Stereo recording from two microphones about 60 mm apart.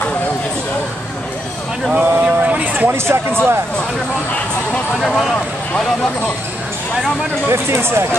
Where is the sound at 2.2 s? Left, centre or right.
Right.